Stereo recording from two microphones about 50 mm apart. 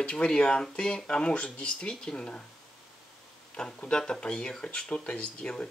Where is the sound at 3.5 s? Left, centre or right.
Centre.